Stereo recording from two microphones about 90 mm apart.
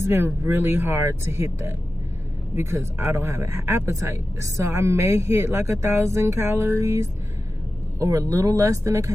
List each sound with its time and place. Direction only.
0.0 s speech: 30° right (ahead or behind)